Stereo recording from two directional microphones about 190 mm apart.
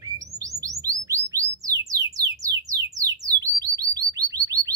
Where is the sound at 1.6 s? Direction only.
15° right (ahead or behind).